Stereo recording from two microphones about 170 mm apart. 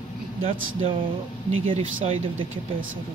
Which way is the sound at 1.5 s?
35° right (ahead or behind).